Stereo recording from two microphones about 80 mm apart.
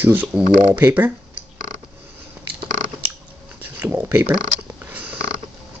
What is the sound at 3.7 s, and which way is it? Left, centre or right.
Speech, right.